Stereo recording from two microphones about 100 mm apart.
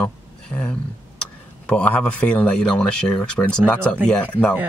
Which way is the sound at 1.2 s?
10° left (ahead or behind).